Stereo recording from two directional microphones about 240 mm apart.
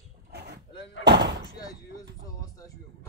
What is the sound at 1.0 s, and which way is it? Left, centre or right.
Door, right.